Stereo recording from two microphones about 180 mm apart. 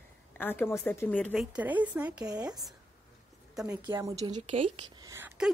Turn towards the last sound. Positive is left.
turn(degrees=-10)  # may be behind; listen again after turning